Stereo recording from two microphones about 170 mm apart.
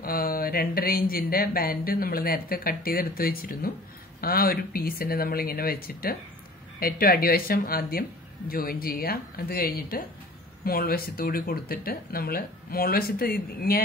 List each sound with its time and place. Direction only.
0.0 s speech: 60° left (ahead or behind)